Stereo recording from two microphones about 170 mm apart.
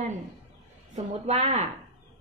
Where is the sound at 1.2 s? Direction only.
40° right (ahead or behind).